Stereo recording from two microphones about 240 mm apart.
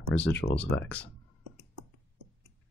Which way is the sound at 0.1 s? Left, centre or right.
Centre.